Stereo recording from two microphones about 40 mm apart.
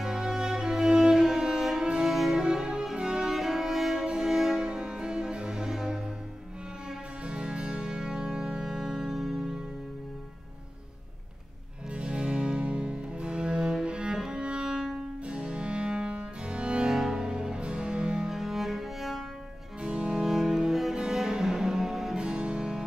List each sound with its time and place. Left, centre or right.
0.0 s violin: centre
1.9 s music: centre
2.1 s music: centre
2.4 s music: centre
7.2 s music: right
11.9 s music: right
15.2 s music: right
16.8 s music: centre
19.8 s music: right
20.2 s music: centre
22.2 s music: right